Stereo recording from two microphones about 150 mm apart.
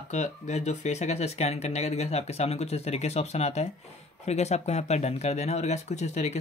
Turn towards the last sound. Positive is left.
turn(degrees=50)  # may be behind; listen again after turning